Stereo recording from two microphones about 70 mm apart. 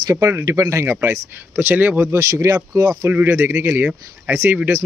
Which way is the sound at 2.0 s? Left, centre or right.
Right.